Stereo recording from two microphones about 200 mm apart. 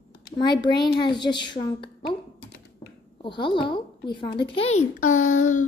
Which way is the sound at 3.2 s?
25° left (ahead or behind).